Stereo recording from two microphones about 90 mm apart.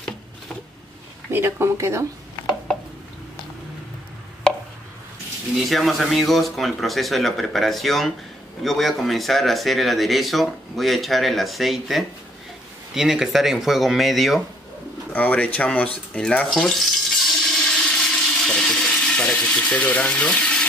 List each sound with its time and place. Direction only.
1.3 s speech: 30° right (ahead or behind)
5.7 s speech: centre (ahead or behind)
15.1 s a sound: 15° left (ahead or behind)